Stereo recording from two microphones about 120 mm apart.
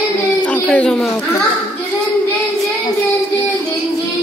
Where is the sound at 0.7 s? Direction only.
5° left (ahead or behind).